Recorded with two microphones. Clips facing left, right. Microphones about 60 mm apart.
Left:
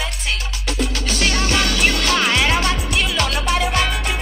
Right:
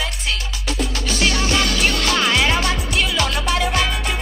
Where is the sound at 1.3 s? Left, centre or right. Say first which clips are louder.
Even; left.